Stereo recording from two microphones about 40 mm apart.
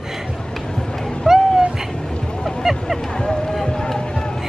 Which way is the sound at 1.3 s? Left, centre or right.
Centre.